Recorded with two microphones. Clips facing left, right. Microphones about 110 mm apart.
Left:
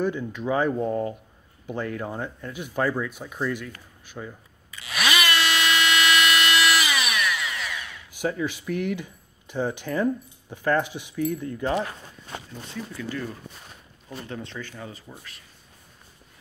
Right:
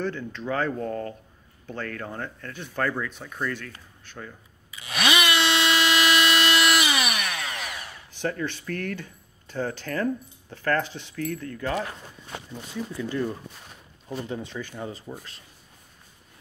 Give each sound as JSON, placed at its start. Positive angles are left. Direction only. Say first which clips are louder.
{"t": 0.0, "sound": "speech", "louder": "left 4 dB", "side_deg": 10}
{"t": 5.0, "sound": "dental drill", "louder": "right 1 dB", "side_deg": -20}
{"t": 7.2, "sound": "a sound", "louder": "left 3 dB", "side_deg": -40}
{"t": 8.1, "sound": "speech", "louder": "left 2 dB", "side_deg": 10}
{"t": 12.9, "sound": "speech", "louder": "right 5 dB", "side_deg": -20}
{"t": 14.8, "sound": "speech", "louder": "right 5 dB", "side_deg": -25}